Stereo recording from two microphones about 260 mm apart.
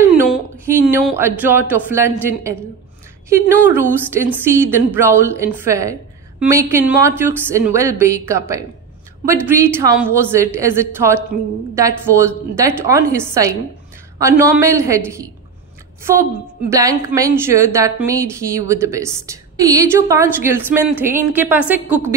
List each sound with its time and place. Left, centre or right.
0.1 s a sound: centre
0.9 s a woman's voice: centre
3.6 s a woman's voice: centre
16.6 s a woman's voice: centre